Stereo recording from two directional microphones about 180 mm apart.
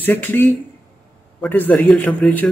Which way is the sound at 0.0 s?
10° left (ahead or behind).